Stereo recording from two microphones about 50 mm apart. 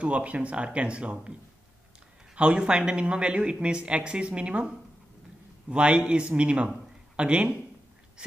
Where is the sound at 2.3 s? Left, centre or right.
Right.